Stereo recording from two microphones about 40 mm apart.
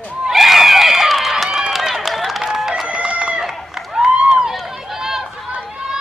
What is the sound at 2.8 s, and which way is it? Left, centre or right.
Chicken, right.